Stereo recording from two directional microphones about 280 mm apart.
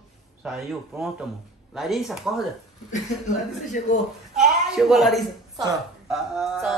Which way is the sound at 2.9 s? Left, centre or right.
Left.